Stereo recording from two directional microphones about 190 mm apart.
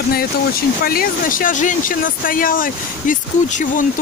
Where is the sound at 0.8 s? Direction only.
50° left (ahead or behind).